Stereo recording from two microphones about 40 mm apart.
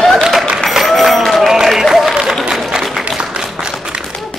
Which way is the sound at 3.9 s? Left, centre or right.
Right.